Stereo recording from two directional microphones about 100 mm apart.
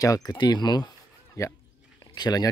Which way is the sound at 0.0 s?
40° left (ahead or behind).